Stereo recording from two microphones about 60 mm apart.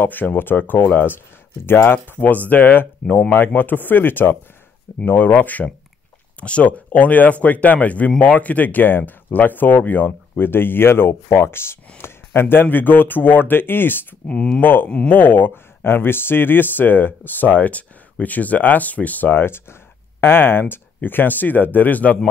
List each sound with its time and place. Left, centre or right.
0.0 s speech: left
14.3 s speech: centre
14.6 s speech: left